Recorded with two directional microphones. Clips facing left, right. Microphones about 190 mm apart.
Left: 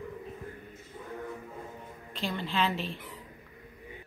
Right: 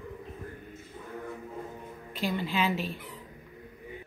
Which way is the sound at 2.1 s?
5° right (ahead or behind).